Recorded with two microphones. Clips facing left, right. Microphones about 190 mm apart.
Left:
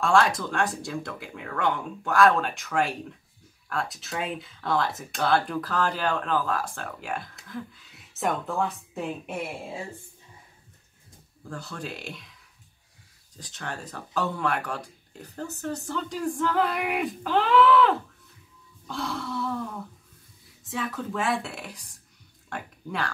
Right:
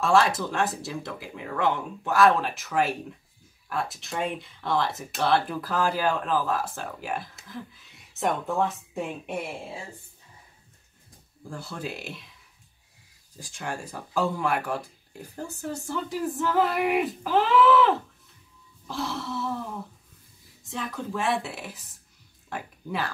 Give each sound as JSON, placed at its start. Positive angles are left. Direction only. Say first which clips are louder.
{"t": 0.0, "sound": "speech", "louder": "even", "side_deg": -5}
{"t": 11.4, "sound": "speech", "louder": "right 1 dB", "side_deg": -10}
{"t": 13.4, "sound": "speech", "louder": "right 2 dB", "side_deg": -10}
{"t": 20.6, "sound": "speech", "louder": "left 2 dB", "side_deg": 0}